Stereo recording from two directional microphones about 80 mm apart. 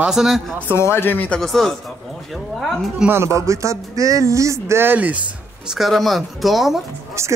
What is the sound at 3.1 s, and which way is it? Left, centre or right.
Speech, right.